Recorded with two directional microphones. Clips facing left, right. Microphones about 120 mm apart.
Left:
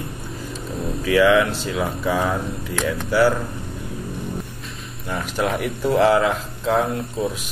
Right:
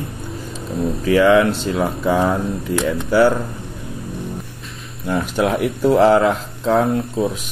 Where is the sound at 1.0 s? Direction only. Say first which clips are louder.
Right 3 dB; 30° right (ahead or behind).